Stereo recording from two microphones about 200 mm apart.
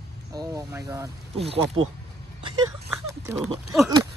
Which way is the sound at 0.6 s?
15° right (ahead or behind).